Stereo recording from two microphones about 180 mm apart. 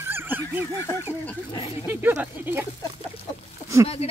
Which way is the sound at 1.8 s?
10° right (ahead or behind).